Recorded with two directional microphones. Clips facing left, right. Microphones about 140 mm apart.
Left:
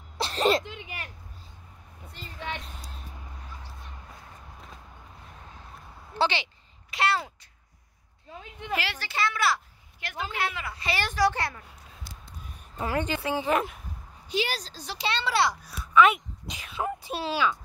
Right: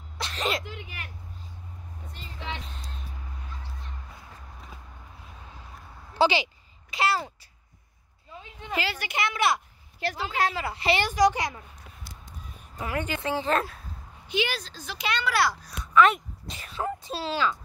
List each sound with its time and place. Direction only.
0.2 s a sound: 35° left (ahead or behind)
0.7 s vehicle: 20° left (ahead or behind)
2.6 s vehicle: 5° left (ahead or behind)
6.1 s a child's voice: 10° right (ahead or behind)
8.9 s a woman's voice: 15° right (ahead or behind)
9.9 s a woman's voice: 35° right (ahead or behind)
11.1 s a woman's voice: 15° right (ahead or behind)
12.7 s a woman's voice: 30° left (ahead or behind)
13.2 s speech: 15° left (ahead or behind)
14.3 s speech: 35° left (ahead or behind)
15.8 s speech: 5° left (ahead or behind)
16.8 s speech: 15° left (ahead or behind)